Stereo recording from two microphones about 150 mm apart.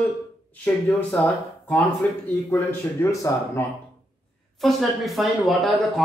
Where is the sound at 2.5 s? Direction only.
15° left (ahead or behind).